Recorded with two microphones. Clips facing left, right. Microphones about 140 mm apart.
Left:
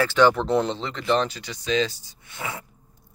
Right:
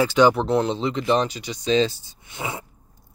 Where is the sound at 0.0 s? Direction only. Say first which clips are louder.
Right 2 dB; 15° right (ahead or behind).